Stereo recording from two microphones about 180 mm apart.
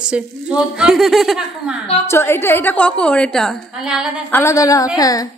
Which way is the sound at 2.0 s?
15° left (ahead or behind).